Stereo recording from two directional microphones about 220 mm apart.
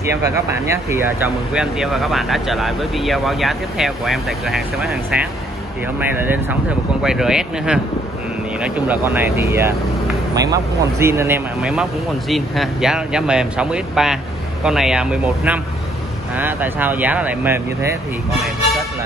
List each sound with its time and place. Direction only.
0.0 s speech: 15° right (ahead or behind)
5.9 s speech: 10° right (ahead or behind)